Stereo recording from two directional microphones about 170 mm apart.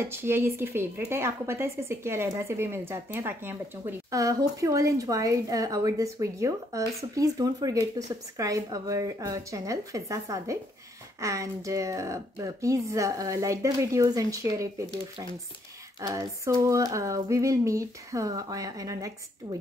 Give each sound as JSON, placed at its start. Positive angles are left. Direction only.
{"t": 0.0, "sound": "a woman's voice", "side_deg": -15}